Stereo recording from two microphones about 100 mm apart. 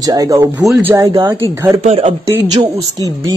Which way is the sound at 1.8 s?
90° right.